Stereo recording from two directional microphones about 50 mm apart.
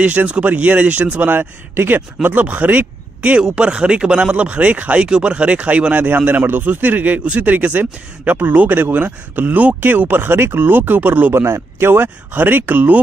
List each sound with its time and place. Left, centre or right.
0.0 s speech: right
1.3 s speech: right
11.3 s speech: right